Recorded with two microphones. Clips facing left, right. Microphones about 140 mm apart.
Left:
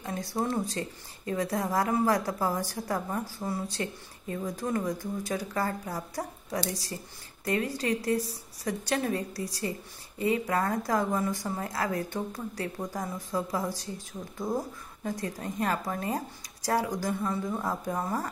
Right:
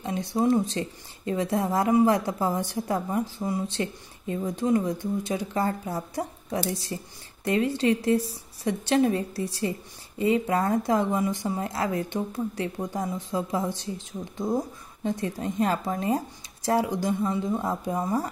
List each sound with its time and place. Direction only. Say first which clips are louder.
0.0 s a woman's voice: right 6 dB; 25° right (ahead or behind)